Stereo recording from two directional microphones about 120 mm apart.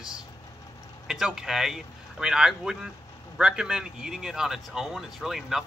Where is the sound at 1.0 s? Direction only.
5° right (ahead or behind).